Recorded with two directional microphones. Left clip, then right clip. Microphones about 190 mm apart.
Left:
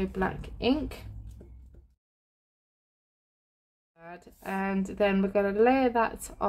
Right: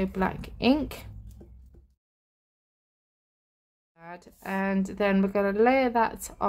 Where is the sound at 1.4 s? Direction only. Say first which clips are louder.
Right 2 dB; 15° right (ahead or behind).